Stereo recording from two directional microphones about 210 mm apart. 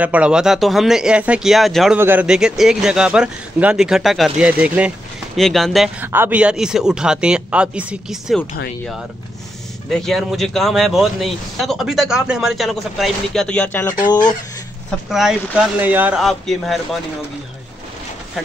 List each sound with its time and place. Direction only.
0.0 s a man's voice: 5° right (ahead or behind)
9.8 s a man's voice: centre (ahead or behind)
15.0 s a man's voice: centre (ahead or behind)